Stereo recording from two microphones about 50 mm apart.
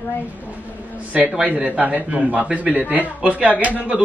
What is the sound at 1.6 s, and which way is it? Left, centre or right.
A man's voice, right.